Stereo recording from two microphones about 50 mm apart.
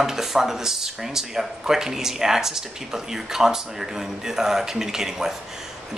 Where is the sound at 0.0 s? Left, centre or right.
Centre.